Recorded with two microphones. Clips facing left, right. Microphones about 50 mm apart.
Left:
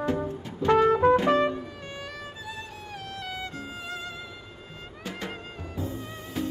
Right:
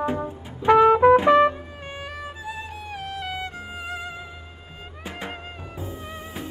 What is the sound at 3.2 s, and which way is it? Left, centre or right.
Music, right.